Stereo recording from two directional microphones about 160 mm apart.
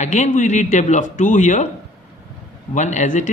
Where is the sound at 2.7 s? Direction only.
50° left (ahead or behind).